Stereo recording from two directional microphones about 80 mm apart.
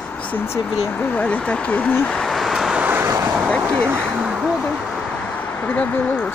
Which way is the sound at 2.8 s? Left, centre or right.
Right.